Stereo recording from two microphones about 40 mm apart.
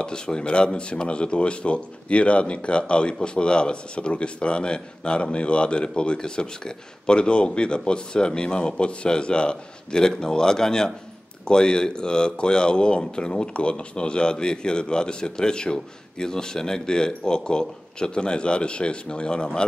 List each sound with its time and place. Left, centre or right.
0.0 s speech: left